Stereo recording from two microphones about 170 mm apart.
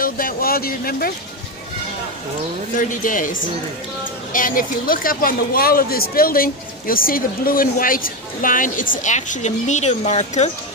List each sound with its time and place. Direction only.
0.0 s speech: 55° left (ahead or behind)
2.7 s speech: 50° left (ahead or behind)